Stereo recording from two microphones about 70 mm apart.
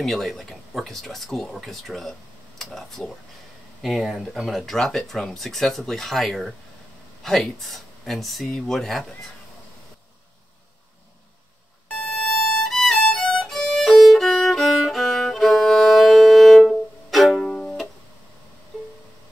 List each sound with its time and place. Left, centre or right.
0.0 s speech: centre
11.9 s violin: centre
17.5 s music: centre